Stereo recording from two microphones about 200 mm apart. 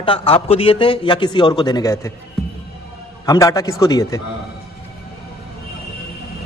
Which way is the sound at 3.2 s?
20° left (ahead or behind).